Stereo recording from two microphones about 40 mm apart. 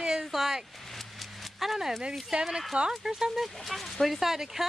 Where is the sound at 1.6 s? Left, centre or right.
Centre.